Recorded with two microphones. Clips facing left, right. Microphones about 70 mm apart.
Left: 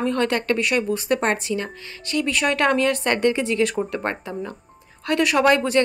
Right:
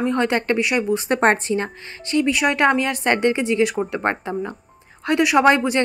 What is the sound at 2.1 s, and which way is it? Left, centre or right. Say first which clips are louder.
A woman's voice: right 3 dB; centre.